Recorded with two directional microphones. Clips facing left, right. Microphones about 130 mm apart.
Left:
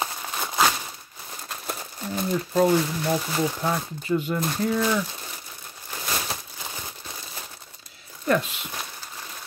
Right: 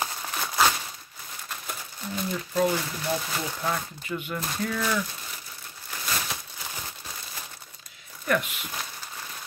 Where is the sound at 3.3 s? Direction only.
25° left (ahead or behind).